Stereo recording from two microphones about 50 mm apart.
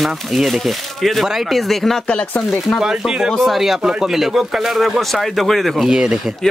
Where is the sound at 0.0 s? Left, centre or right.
Centre.